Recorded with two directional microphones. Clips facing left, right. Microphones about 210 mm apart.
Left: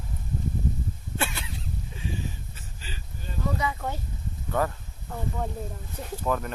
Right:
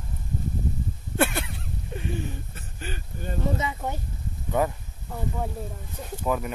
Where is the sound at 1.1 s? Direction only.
55° right (ahead or behind).